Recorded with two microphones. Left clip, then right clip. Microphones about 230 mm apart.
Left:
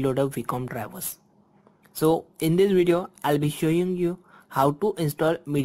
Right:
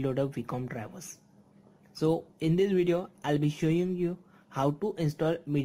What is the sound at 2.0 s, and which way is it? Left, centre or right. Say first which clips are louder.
Speech: left 6 dB; centre.